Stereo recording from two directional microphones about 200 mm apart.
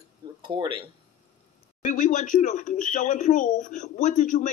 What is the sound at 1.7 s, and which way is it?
Speech, 40° left (ahead or behind).